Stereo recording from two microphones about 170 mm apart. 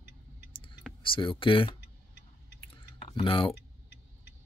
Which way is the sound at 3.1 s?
30° left (ahead or behind).